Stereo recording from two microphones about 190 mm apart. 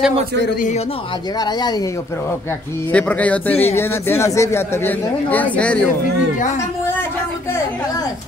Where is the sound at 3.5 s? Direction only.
35° left (ahead or behind).